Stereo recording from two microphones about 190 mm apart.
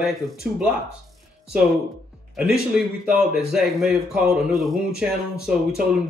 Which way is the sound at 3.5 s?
5° right (ahead or behind).